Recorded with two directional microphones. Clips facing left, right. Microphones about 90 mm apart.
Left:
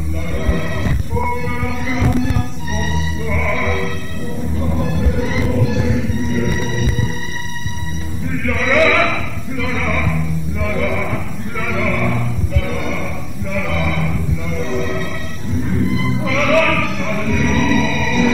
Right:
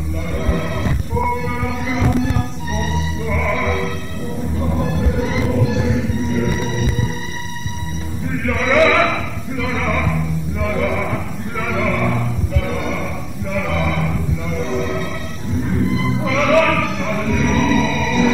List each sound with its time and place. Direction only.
0.4 s neigh: 30° right (ahead or behind)
1.4 s music: 25° right (ahead or behind)
8.5 s a sound: 30° right (ahead or behind)
15.7 s music: 30° right (ahead or behind)